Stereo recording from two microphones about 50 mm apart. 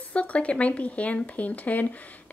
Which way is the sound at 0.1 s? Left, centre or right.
Left.